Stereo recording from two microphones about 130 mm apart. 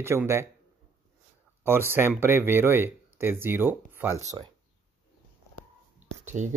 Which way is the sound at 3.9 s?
15° right (ahead or behind).